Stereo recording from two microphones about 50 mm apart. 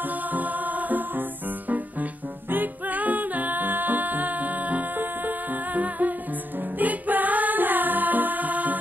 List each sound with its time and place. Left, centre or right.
0.3 s music: right
2.5 s music: right